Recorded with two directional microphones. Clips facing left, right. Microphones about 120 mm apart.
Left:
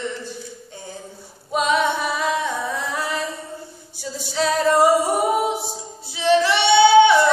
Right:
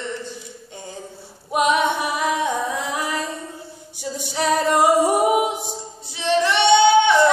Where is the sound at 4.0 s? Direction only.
15° right (ahead or behind).